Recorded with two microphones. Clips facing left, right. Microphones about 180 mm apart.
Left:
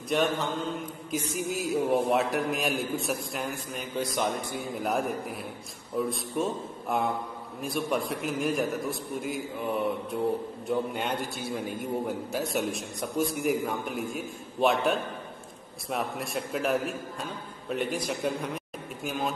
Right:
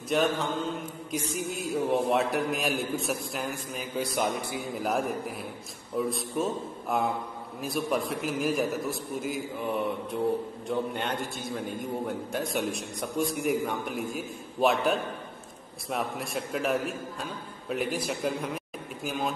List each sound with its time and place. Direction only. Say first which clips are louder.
0.1 s a man's voice: right 1 dB; centre (ahead or behind)